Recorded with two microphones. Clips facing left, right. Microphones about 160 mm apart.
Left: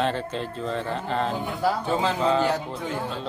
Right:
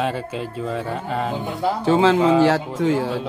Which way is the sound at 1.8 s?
90° right.